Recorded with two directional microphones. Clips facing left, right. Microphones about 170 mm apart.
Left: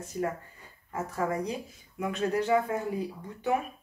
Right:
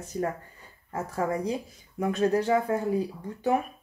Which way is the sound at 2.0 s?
35° right (ahead or behind).